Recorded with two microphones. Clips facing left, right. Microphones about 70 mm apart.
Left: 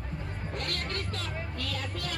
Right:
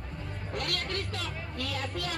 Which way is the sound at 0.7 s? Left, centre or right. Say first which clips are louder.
Right 1 dB; left.